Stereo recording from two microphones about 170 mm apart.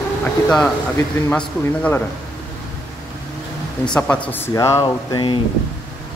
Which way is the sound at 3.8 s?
5° left (ahead or behind).